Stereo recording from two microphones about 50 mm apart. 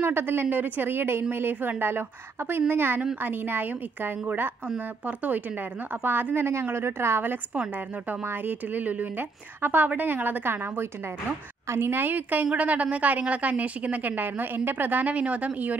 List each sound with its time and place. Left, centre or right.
0.0 s a woman's voice: right
4.7 s a woman's voice: right
7.7 s a woman's voice: right